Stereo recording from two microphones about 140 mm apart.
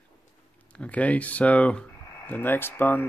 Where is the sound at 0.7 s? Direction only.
10° left (ahead or behind).